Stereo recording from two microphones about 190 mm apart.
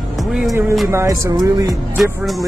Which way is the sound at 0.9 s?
15° right (ahead or behind).